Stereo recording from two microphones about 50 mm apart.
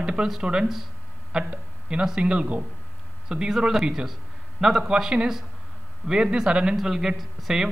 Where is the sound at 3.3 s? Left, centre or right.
Centre.